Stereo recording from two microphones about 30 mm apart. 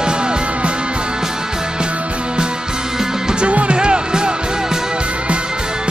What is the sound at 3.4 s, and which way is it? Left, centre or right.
Music, right.